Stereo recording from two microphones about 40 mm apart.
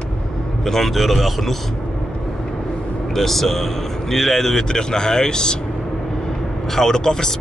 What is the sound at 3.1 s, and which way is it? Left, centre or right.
Speech, centre.